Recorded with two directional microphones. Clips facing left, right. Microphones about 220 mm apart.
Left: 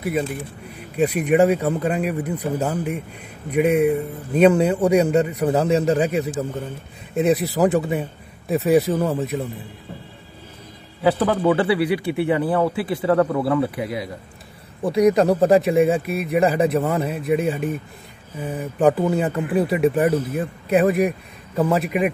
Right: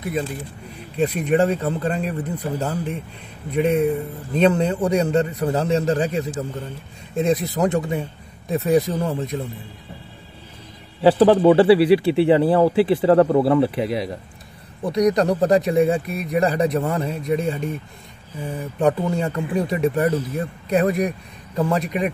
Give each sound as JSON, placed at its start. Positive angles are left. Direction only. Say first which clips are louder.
{"t": 0.0, "sound": "a man's voice", "louder": "left 2 dB", "side_deg": 5}
{"t": 11.0, "sound": "speech", "louder": "right 5 dB", "side_deg": -30}
{"t": 14.9, "sound": "a man's voice", "louder": "left 2 dB", "side_deg": 5}
{"t": 19.6, "sound": "speech", "louder": "left 2 dB", "side_deg": 5}